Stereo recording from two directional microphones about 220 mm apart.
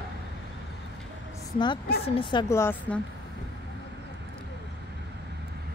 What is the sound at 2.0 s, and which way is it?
Speech, 25° left (ahead or behind).